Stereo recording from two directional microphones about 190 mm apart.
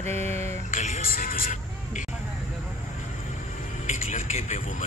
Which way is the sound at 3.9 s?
40° left (ahead or behind).